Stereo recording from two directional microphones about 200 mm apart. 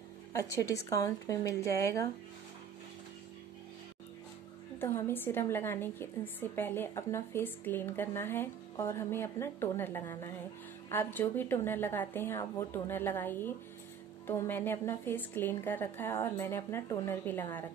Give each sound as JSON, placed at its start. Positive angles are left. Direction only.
{"t": 0.3, "sound": "speech", "side_deg": 15}
{"t": 4.7, "sound": "speech", "side_deg": 10}